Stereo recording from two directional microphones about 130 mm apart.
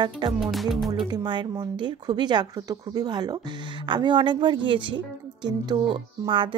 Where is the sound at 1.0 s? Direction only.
35° right (ahead or behind).